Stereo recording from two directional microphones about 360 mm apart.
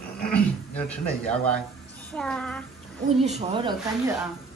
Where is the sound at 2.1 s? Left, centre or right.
Centre.